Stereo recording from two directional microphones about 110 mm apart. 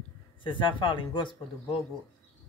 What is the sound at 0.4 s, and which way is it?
Speech, 50° left (ahead or behind).